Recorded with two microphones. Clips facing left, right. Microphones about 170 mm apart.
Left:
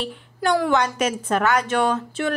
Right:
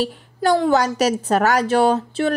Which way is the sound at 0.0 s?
35° right (ahead or behind).